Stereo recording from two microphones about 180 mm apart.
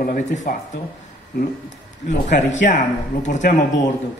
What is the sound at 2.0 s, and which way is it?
A man's voice, 40° left (ahead or behind).